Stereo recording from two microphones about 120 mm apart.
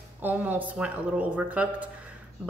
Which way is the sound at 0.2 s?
15° right (ahead or behind).